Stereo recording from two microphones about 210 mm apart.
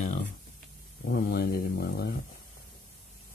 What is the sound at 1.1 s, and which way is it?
Speech, 50° left (ahead or behind).